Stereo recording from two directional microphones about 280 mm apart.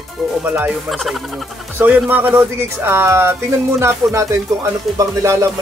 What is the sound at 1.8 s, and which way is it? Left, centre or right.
Speech, centre.